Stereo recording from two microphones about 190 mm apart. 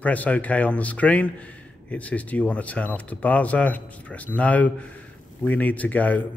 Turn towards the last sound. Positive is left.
turn(degrees=10)  # may be behind; listen again after turning